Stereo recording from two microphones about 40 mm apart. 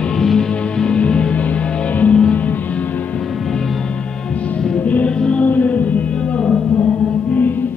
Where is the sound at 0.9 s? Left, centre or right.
Left.